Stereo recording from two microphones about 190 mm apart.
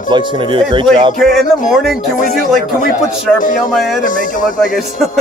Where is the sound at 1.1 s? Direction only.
Centre (ahead or behind).